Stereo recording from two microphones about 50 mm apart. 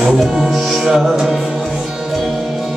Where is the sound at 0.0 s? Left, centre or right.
Centre.